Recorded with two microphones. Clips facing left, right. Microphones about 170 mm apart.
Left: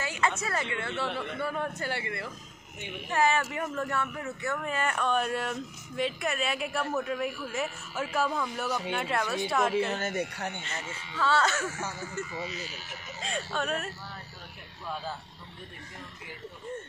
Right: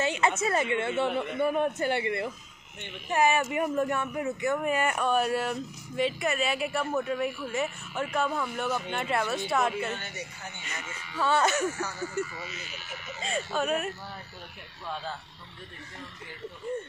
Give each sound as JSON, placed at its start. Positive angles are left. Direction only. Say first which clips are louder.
{"t": 0.0, "sound": "a man's voice", "louder": "right 4 dB", "side_deg": -20}
{"t": 9.9, "sound": "speech", "louder": "left 9 dB", "side_deg": 45}
{"t": 10.2, "sound": "speech", "louder": "left 7 dB", "side_deg": 65}
{"t": 10.7, "sound": "speech", "louder": "left 2 dB", "side_deg": 30}
{"t": 11.1, "sound": "speech", "louder": "right 2 dB", "side_deg": -15}
{"t": 12.3, "sound": "speech", "louder": "left 4 dB", "side_deg": 25}
{"t": 12.5, "sound": "speech", "louder": "left 3 dB", "side_deg": 35}
{"t": 13.2, "sound": "speech", "louder": "right 3 dB", "side_deg": 0}